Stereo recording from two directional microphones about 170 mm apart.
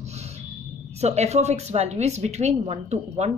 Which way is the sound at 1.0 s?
40° right (ahead or behind).